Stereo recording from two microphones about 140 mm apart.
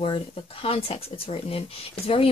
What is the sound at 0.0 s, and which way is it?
A woman's voice, 40° left (ahead or behind).